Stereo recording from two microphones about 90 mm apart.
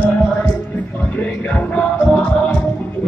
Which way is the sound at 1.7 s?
10° left (ahead or behind).